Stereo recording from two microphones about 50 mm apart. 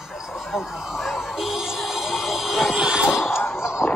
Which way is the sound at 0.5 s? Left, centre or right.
Centre.